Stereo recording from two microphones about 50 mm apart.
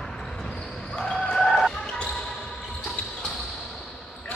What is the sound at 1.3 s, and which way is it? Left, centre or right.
Basketball bounce, centre.